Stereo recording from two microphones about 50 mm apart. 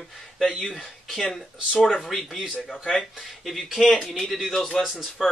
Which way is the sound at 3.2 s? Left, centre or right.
Centre.